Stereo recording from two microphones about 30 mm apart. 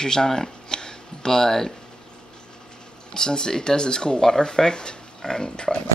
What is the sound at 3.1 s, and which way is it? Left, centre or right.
Speech, left.